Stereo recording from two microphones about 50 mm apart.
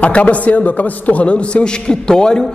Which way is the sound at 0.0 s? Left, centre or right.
Left.